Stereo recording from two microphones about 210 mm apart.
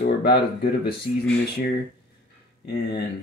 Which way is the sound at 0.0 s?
50° left (ahead or behind).